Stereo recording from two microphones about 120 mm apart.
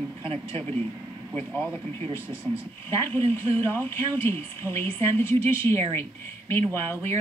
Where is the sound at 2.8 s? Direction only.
20° left (ahead or behind).